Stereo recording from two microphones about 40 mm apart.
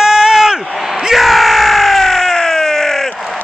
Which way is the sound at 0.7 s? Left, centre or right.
Centre.